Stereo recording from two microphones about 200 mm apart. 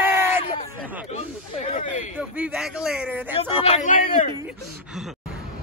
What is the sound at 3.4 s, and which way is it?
Speech, 35° left (ahead or behind).